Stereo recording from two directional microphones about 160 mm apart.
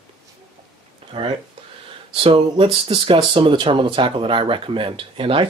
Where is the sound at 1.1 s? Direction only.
40° right (ahead or behind).